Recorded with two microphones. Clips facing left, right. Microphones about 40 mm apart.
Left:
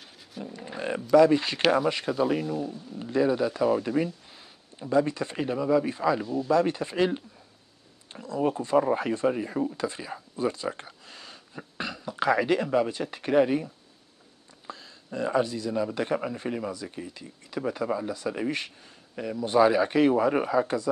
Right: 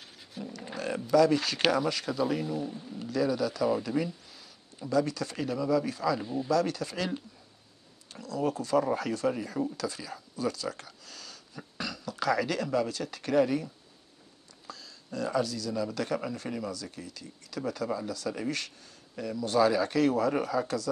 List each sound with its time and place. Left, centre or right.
0.4 s roaring cats: centre
0.7 s a sound: left
1.1 s a man's voice: left
2.4 s speech: centre
3.0 s a man's voice: left
14.7 s a man's voice: left